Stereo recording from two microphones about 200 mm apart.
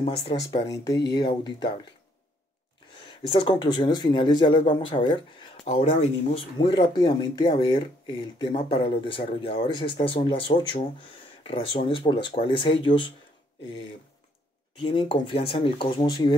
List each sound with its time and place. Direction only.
0.0 s speech: 25° left (ahead or behind)
3.3 s speech: 25° left (ahead or behind)
14.8 s speech: 25° left (ahead or behind)